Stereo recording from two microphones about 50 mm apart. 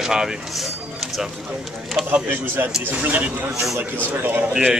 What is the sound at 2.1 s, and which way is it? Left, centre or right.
Speech, right.